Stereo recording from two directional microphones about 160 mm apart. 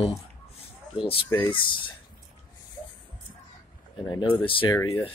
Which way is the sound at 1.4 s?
30° left (ahead or behind).